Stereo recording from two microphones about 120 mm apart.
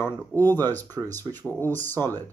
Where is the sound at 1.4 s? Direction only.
15° left (ahead or behind).